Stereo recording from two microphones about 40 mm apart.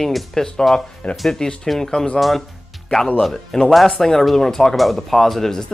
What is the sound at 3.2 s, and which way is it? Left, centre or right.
Speech, centre.